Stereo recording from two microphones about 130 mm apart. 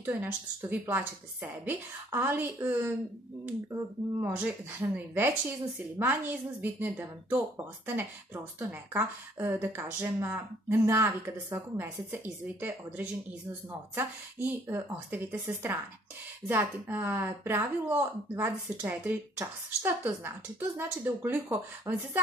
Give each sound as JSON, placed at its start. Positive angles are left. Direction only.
{"t": 0.0, "sound": "a woman's voice", "side_deg": -15}